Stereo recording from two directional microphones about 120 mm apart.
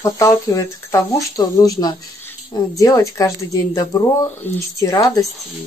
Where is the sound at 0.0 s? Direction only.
25° left (ahead or behind).